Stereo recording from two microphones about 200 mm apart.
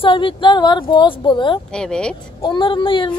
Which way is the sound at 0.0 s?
25° left (ahead or behind).